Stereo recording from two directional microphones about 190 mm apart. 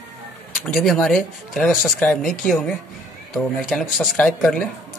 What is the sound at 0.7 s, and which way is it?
Speech, centre (ahead or behind).